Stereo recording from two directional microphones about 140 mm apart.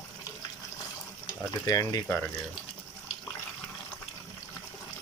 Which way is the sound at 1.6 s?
25° left (ahead or behind).